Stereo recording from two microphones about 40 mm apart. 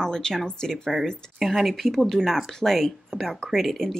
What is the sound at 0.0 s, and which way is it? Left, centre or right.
Speech, centre.